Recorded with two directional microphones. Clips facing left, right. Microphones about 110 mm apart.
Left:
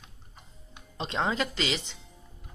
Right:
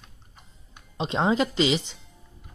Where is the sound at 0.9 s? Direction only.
20° right (ahead or behind).